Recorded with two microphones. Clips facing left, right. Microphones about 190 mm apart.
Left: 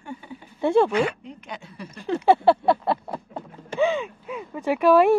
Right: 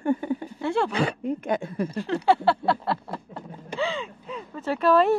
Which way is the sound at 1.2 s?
50° right (ahead or behind).